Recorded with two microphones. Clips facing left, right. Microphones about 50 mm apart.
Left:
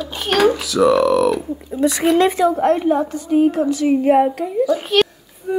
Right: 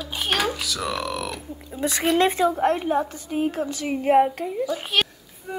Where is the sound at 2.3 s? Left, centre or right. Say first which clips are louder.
Left 5 dB; left.